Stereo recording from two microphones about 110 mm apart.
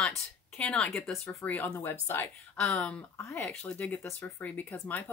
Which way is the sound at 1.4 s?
15° left (ahead or behind).